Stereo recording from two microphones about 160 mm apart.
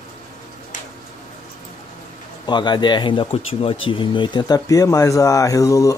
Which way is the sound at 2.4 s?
30° left (ahead or behind).